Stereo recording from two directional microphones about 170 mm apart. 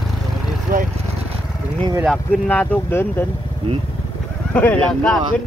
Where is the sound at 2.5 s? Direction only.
10° left (ahead or behind).